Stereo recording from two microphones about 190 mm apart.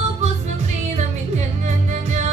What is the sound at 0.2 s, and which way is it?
Music, 35° right (ahead or behind).